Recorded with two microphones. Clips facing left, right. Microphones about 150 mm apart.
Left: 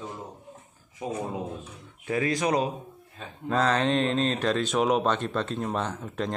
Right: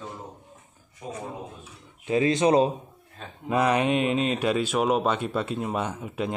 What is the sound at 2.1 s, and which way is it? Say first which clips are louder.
Speech: right 5 dB; 25° right (ahead or behind).